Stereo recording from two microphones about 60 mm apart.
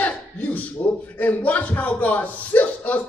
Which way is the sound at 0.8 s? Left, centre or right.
Left.